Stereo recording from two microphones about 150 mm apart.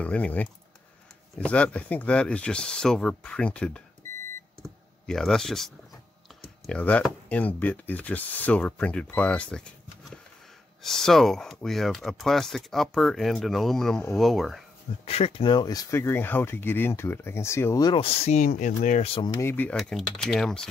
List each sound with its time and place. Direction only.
0.0 s speech: 10° left (ahead or behind)
15.0 s speech: 40° left (ahead or behind); by 16.0 s 25° left (ahead or behind)
16.0 s speech: 15° left (ahead or behind)
18.0 s speech: 45° left (ahead or behind)
18.5 s speech: 55° left (ahead or behind)
19.0 s speech: 35° left (ahead or behind)
19.3 s speech: 15° left (ahead or behind)
19.8 s speech: centre (ahead or behind)